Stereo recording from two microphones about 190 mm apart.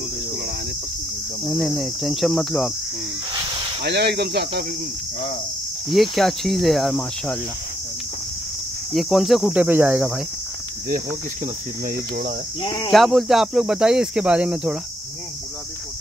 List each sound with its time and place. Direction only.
1.5 s speech: centre (ahead or behind)
3.3 s snake: 20° right (ahead or behind)
3.8 s speech: 60° right (ahead or behind)
5.9 s speech: centre (ahead or behind)
8.9 s speech: centre (ahead or behind)
12.6 s speech: 25° left (ahead or behind)
12.9 s speech: centre (ahead or behind)